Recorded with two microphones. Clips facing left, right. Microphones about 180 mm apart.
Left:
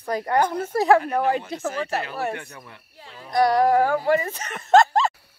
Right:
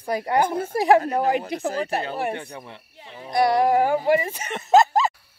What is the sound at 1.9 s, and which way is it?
Speech, 30° right (ahead or behind).